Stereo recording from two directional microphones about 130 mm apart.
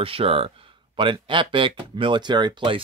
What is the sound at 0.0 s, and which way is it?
Speech, 45° right (ahead or behind).